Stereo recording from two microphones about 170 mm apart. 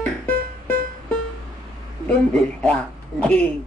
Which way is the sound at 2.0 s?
5° left (ahead or behind).